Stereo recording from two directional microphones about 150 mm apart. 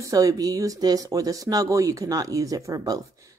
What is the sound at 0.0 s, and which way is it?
Speech, 20° right (ahead or behind).